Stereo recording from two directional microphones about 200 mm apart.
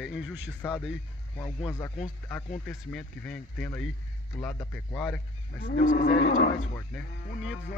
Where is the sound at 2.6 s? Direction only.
5° left (ahead or behind).